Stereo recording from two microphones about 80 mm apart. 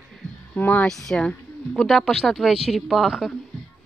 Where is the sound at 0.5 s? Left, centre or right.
Left.